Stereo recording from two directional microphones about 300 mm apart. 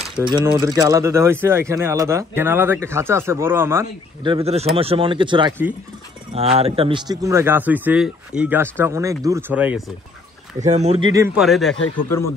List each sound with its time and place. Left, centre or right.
0.2 s speech: centre
10.6 s speech: right
11.3 s a man's voice: centre
11.7 s speech: left